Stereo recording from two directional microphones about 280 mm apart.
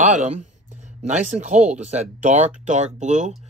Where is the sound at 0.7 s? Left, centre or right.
Right.